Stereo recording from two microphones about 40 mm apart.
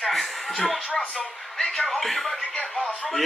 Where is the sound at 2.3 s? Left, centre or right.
Left.